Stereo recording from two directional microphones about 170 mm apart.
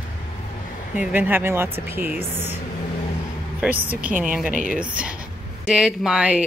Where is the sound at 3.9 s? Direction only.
10° right (ahead or behind).